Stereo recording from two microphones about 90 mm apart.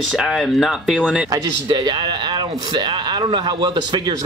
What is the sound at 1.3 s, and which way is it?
Speech, 50° right (ahead or behind).